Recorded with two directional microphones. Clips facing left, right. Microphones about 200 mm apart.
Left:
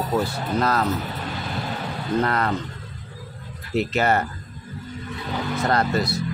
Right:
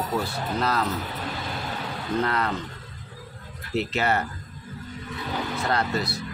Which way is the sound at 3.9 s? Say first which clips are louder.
Left 4 dB; 45° left (ahead or behind).